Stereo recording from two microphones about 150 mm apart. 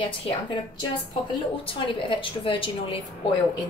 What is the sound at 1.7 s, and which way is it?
A woman's voice, 35° left (ahead or behind).